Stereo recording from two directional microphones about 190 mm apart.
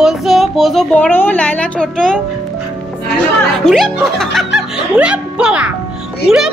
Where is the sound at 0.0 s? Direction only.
Centre (ahead or behind).